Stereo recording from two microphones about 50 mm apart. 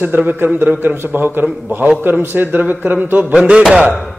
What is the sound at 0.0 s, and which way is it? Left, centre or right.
A man's voice, right.